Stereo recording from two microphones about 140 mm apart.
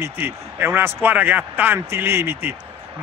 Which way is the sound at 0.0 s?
15° right (ahead or behind).